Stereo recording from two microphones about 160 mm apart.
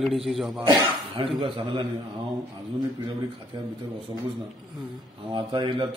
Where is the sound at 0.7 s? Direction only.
30° right (ahead or behind).